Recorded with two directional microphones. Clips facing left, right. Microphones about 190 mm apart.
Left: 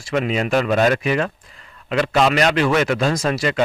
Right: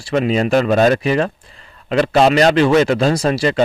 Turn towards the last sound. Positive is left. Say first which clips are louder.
# right 4 dB
turn(degrees=-30)  # may be behind; listen again after turning